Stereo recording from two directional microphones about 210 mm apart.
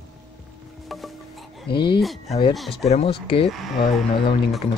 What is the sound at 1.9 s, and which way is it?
Speech, centre (ahead or behind).